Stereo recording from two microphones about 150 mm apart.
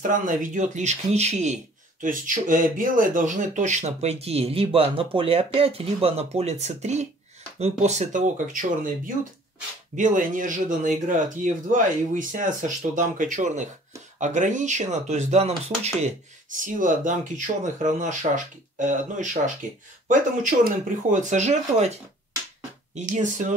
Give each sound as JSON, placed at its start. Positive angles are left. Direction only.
{"t": 0.0, "sound": "speech", "side_deg": -60}
{"t": 22.9, "sound": "speech", "side_deg": -55}